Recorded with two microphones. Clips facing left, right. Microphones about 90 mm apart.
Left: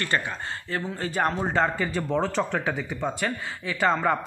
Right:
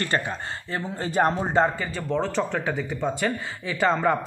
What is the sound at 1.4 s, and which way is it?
Speech, 15° right (ahead or behind).